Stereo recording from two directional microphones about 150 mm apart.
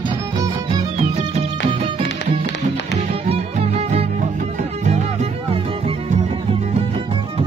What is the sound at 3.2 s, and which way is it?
Music, 40° right (ahead or behind).